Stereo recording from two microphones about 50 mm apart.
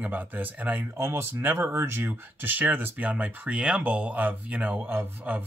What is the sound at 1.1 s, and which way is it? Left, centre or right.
Speech, right.